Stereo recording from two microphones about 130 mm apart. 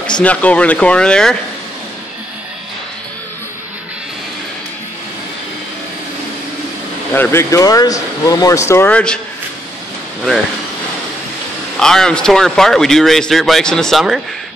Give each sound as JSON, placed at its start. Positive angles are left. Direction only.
{"t": 0.2, "sound": "speech", "side_deg": 10}
{"t": 7.2, "sound": "speech", "side_deg": 20}
{"t": 11.8, "sound": "a man's voice", "side_deg": 5}